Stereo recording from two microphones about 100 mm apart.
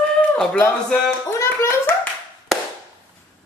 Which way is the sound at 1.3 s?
30° left (ahead or behind).